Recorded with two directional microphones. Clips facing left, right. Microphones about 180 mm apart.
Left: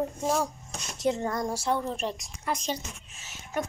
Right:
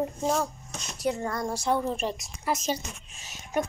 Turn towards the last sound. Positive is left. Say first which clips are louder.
# right 3 dB
turn(degrees=-15)  # may be behind; listen again after turning